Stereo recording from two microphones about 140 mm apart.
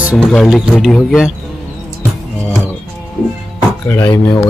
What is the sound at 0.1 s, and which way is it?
Speech, 5° left (ahead or behind).